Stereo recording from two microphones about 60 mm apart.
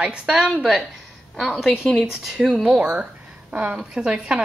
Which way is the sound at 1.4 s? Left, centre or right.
Centre.